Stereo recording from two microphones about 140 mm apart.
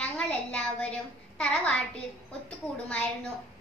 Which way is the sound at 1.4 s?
5° left (ahead or behind).